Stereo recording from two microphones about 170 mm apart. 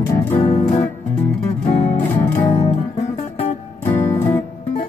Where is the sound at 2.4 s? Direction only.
30° left (ahead or behind).